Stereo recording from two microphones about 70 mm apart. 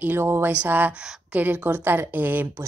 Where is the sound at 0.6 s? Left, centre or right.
Right.